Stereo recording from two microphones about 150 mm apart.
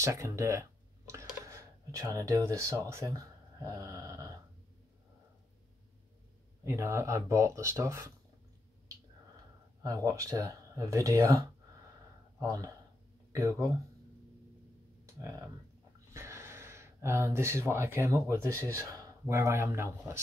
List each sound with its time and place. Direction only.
0.0 s a sound: 20° right (ahead or behind)
2.9 s speech: 20° right (ahead or behind)
6.6 s speech: 20° right (ahead or behind)
9.8 s speech: 20° right (ahead or behind)
15.1 s speech: 20° right (ahead or behind)